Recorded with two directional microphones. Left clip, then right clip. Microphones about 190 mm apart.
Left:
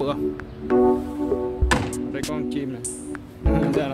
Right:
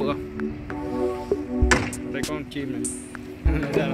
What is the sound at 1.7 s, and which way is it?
Music, 60° left (ahead or behind).